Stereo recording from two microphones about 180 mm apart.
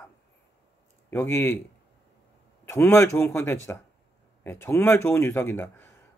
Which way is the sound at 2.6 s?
15° left (ahead or behind).